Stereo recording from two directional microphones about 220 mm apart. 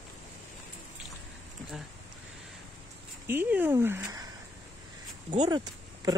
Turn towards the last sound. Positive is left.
turn(degrees=-15)  # may be behind; listen again after turning